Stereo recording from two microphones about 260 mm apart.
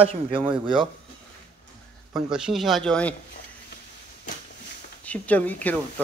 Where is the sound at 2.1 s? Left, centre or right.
Centre.